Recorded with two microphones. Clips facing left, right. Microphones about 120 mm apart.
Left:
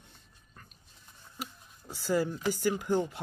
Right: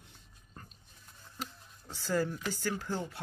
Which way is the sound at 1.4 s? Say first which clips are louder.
Left 1 dB; 10° left (ahead or behind).